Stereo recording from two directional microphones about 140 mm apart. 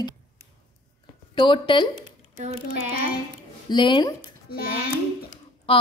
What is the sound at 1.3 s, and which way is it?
Speech, 35° left (ahead or behind).